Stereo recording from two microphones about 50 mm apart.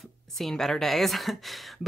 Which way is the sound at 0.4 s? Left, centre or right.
Centre.